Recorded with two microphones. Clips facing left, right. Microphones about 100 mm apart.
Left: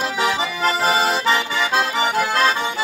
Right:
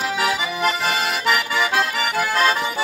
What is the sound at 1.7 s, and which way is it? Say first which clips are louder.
Music: left 2 dB; 25° left (ahead or behind).